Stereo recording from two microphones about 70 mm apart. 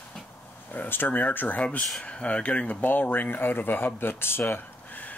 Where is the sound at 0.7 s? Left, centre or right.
Left.